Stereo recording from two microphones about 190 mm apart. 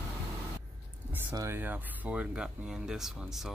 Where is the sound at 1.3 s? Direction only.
10° right (ahead or behind).